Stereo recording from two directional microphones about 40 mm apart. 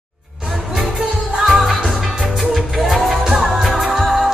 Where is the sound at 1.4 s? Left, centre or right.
Centre.